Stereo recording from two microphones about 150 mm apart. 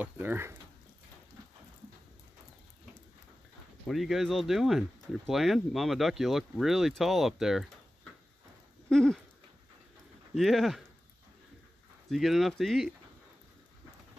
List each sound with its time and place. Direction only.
0.0 s speech: 15° right (ahead or behind)
3.8 s speech: centre (ahead or behind)
8.8 s a sound: 5° left (ahead or behind)
10.3 s speech: centre (ahead or behind)
12.1 s speech: centre (ahead or behind)